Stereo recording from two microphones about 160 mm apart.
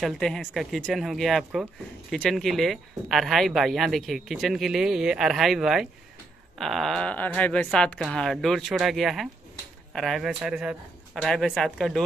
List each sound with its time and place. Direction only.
0.0 s speech: centre (ahead or behind)